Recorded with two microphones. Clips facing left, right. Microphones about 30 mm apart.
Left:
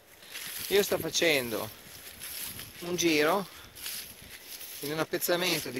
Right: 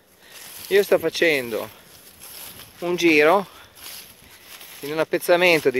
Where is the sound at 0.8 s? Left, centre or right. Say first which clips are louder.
Right 11 dB; right.